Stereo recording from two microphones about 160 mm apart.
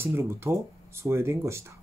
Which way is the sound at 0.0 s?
15° right (ahead or behind).